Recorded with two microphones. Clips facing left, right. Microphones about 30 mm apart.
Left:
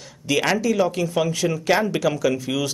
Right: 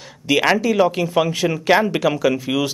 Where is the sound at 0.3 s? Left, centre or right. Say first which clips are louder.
Right 4 dB; centre.